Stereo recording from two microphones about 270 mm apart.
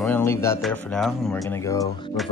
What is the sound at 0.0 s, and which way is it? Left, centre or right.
Music, centre.